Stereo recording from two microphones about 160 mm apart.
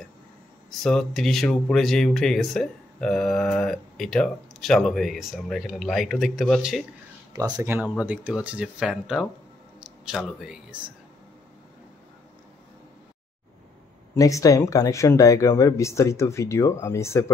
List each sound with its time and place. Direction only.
0.7 s speech: centre (ahead or behind)
7.3 s speech: 25° right (ahead or behind)
7.9 s speech: 10° right (ahead or behind)
14.1 s speech: 20° left (ahead or behind)